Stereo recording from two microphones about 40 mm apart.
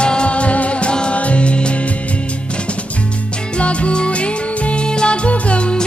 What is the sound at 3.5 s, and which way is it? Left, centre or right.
Music, left.